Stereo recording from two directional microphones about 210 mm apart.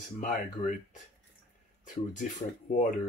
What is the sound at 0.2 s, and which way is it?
Speech, 35° left (ahead or behind).